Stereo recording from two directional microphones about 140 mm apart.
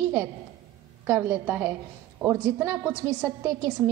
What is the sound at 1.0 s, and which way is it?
A woman's voice, 15° right (ahead or behind).